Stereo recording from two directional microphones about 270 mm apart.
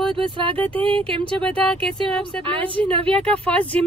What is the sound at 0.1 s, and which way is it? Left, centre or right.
Speech, centre.